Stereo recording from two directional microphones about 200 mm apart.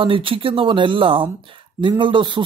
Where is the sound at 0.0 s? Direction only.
25° right (ahead or behind).